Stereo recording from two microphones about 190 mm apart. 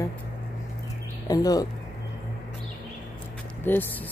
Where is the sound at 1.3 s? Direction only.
20° left (ahead or behind).